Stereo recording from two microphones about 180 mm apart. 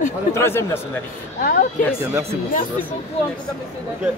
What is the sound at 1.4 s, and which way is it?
Speech, 55° left (ahead or behind).